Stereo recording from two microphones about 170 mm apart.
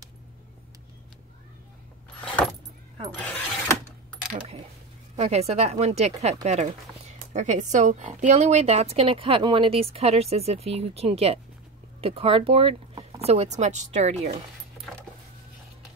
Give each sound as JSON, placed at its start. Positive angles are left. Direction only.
{"t": 3.2, "sound": "vehicle", "side_deg": 5}
{"t": 5.1, "sound": "speech", "side_deg": -40}